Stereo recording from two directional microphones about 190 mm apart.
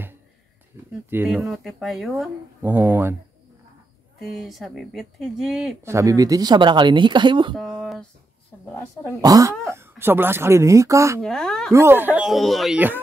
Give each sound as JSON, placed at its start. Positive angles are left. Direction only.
{"t": 0.7, "sound": "a sound", "side_deg": -10}
{"t": 1.1, "sound": "speech", "side_deg": -10}
{"t": 4.2, "sound": "speech", "side_deg": 0}
{"t": 5.9, "sound": "speech", "side_deg": -15}
{"t": 7.8, "sound": "a sound", "side_deg": 0}
{"t": 9.2, "sound": "speech", "side_deg": -20}
{"t": 11.2, "sound": "speech", "side_deg": 0}
{"t": 11.7, "sound": "speech", "side_deg": -15}